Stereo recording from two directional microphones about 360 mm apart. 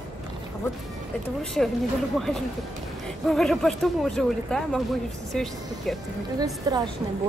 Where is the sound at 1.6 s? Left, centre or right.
Centre.